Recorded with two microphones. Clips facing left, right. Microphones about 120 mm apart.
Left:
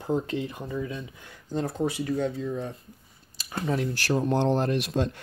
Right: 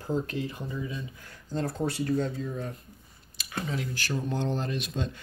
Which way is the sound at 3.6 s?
50° left (ahead or behind).